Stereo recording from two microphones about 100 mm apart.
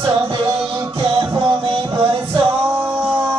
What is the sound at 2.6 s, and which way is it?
Music, 20° right (ahead or behind).